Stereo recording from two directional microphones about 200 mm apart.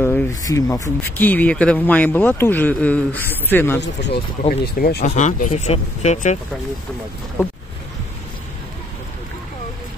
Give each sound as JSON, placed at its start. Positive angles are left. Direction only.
{"t": 0.0, "sound": "speech", "side_deg": 10}
{"t": 4.4, "sound": "speech", "side_deg": 45}